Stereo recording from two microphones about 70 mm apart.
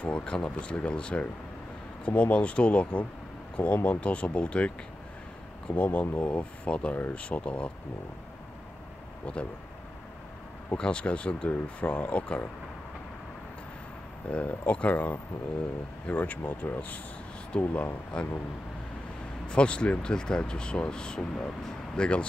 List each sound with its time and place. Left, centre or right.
0.0 s speech: centre
9.2 s speech: centre
10.8 s speech: centre
14.2 s speech: centre
19.4 s speech: centre